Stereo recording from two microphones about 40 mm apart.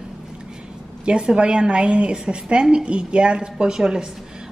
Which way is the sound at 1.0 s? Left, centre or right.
Right.